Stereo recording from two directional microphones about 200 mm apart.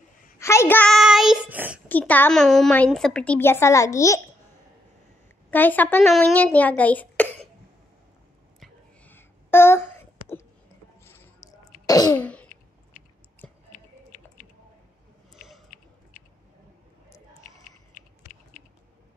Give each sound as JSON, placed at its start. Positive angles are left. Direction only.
{"t": 0.4, "sound": "child singing", "side_deg": 15}
{"t": 1.9, "sound": "a woman's voice", "side_deg": 10}
{"t": 5.5, "sound": "a woman's voice", "side_deg": 10}
{"t": 8.5, "sound": "a sound", "side_deg": 10}
{"t": 11.1, "sound": "squish", "side_deg": 10}
{"t": 11.8, "sound": "cough", "side_deg": 20}
{"t": 12.2, "sound": "throat clearing", "side_deg": 5}
{"t": 12.9, "sound": "chewing", "side_deg": 40}
{"t": 15.3, "sound": "a sound", "side_deg": 0}
{"t": 17.9, "sound": "typing", "side_deg": 45}